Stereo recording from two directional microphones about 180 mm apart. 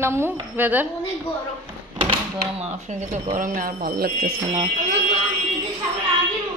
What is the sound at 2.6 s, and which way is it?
Speech, 40° right (ahead or behind).